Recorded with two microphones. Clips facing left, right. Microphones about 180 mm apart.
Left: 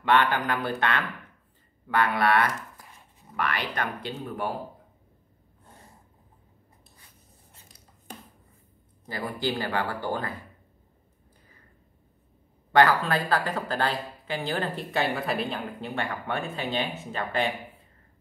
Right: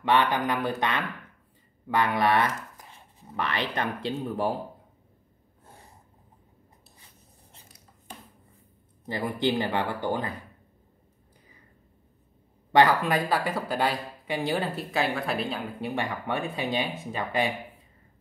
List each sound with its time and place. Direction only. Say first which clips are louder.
0.0 s speech: even; 15° right (ahead or behind)
9.0 s speech: right 3 dB; 20° right (ahead or behind)
12.7 s speech: even; 15° right (ahead or behind)
14.8 s a woman's voice: even; centre (ahead or behind)
15.8 s speech: right 2 dB; 15° right (ahead or behind)